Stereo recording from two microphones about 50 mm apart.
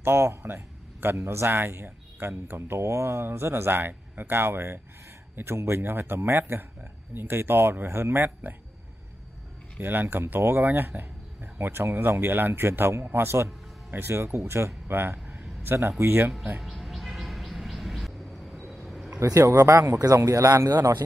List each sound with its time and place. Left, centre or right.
0.0 s speech: right
9.8 s speech: right
11.5 s speech: right
16.6 s a sound: centre
19.0 s speech: right